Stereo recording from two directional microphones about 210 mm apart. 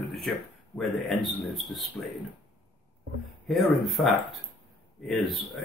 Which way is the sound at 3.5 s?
Centre (ahead or behind).